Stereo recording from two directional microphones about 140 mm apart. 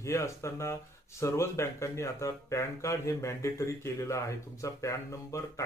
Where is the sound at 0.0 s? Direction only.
20° left (ahead or behind).